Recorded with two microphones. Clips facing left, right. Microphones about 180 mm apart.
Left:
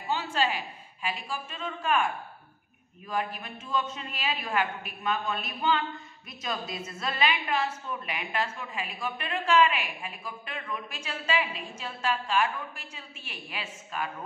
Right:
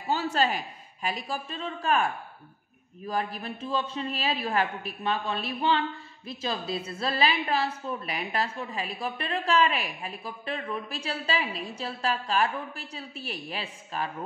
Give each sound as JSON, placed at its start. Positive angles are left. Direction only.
{"t": 0.1, "sound": "a woman's voice", "side_deg": -40}
{"t": 3.1, "sound": "a woman's voice", "side_deg": -35}